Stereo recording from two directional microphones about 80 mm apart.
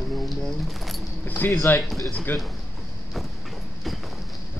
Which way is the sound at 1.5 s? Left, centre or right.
Left.